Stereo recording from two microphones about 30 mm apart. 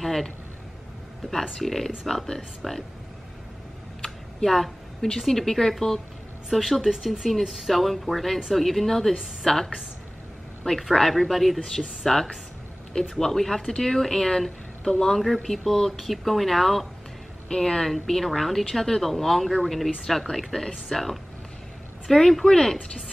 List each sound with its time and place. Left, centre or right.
0.0 s a sound: centre
1.6 s speech: centre
4.0 s a sound: centre
5.3 s a woman's voice: centre
6.8 s speech: centre
7.1 s a woman's voice: centre
12.9 s speech: left
13.3 s speech: centre
17.5 s speech: centre